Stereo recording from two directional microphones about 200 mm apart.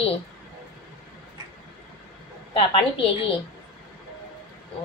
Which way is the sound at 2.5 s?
25° left (ahead or behind).